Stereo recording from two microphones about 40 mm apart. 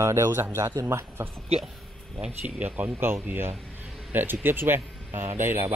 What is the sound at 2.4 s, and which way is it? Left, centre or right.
Speech, right.